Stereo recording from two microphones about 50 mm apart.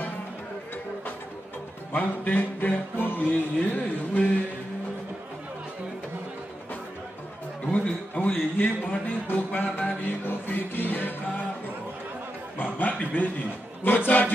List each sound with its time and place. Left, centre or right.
1.9 s music: left
7.7 s a man's voice: left
9.8 s music: left
12.9 s music: left